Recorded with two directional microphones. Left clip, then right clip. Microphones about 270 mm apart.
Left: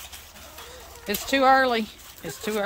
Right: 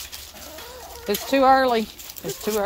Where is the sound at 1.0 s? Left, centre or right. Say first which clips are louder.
Right 2 dB; centre.